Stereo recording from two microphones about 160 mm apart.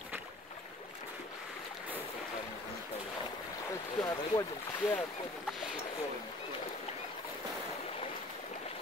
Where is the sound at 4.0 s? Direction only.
20° left (ahead or behind).